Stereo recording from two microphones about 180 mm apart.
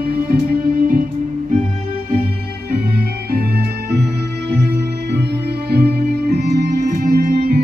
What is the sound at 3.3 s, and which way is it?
Music, 60° right (ahead or behind).